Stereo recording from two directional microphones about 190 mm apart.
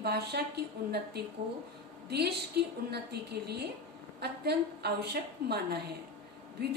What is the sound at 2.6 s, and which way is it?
A woman's voice, 60° right (ahead or behind).